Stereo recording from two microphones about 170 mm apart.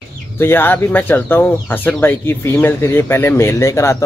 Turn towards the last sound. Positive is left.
turn(degrees=15)  # may be behind; listen again after turning